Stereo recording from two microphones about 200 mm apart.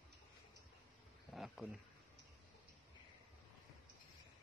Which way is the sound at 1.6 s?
Centre (ahead or behind).